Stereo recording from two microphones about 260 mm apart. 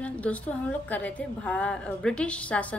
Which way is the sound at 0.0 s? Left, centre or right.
Centre.